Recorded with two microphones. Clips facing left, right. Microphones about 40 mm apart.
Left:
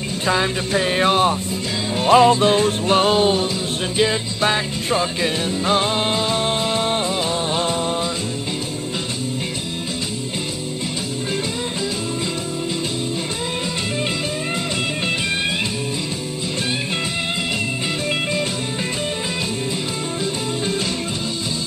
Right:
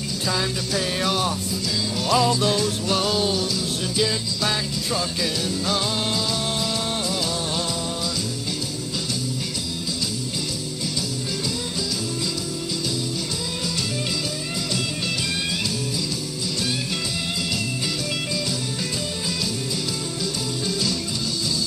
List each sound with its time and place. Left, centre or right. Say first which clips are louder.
0.3 s music: left 6 dB; left